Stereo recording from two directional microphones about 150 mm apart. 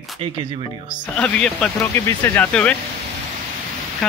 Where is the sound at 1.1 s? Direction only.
10° left (ahead or behind).